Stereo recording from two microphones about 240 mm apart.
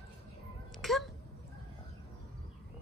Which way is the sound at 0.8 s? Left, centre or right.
Centre.